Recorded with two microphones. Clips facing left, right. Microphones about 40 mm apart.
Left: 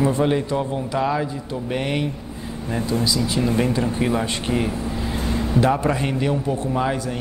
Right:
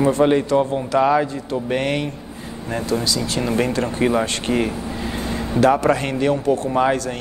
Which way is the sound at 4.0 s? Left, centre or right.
Centre.